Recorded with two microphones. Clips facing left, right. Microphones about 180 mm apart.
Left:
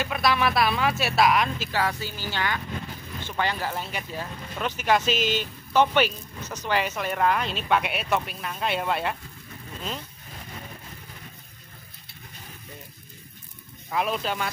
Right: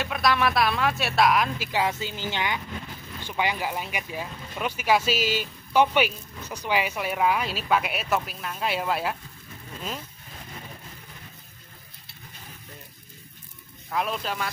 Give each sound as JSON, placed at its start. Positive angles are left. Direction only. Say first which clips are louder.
{"t": 0.0, "sound": "speech", "louder": "even", "side_deg": 0}
{"t": 1.6, "sound": "speech", "louder": "right 1 dB", "side_deg": -15}
{"t": 13.8, "sound": "speech", "louder": "left 2 dB", "side_deg": 5}